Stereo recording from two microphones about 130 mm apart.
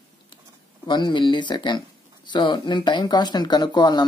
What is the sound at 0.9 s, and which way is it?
Speech, 35° left (ahead or behind).